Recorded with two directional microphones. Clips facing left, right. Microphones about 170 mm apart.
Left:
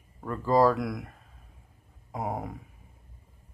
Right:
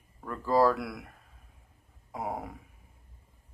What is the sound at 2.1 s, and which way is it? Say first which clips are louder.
Speech: left 3 dB; 10° left (ahead or behind).